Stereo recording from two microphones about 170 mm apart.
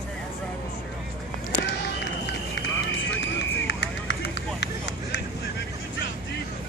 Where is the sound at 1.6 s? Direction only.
85° left.